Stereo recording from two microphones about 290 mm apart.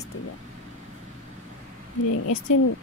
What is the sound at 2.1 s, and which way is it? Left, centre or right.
Speech, left.